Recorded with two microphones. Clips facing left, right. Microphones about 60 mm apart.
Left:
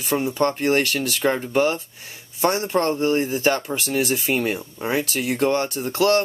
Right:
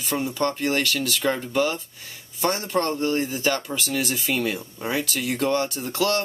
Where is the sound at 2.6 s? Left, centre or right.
Centre.